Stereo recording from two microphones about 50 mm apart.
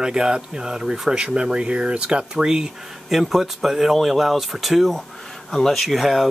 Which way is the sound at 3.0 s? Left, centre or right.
Centre.